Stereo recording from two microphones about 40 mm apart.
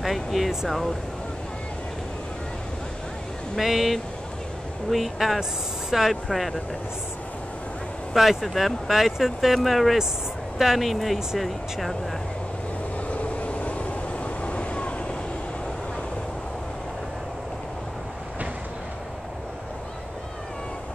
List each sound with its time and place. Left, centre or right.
0.0 s air conditioning: centre
3.5 s speech: centre
6.2 s speech: centre
8.1 s speech: centre
13.1 s vehicle: left